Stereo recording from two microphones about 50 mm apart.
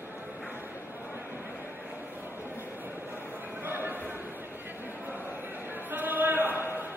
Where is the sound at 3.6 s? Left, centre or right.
Right.